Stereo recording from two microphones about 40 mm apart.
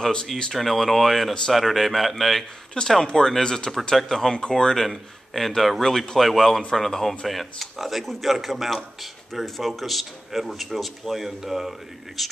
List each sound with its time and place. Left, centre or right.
0.0 s speech: centre
0.5 s speech: centre
2.8 s speech: left
4.8 s speech: centre